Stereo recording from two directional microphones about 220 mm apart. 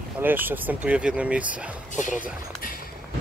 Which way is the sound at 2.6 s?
40° left (ahead or behind).